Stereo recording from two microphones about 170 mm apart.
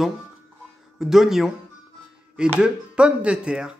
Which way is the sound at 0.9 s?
Centre (ahead or behind).